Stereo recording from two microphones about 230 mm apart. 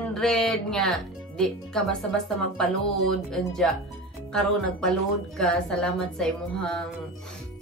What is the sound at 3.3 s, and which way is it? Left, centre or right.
A woman's voice, centre.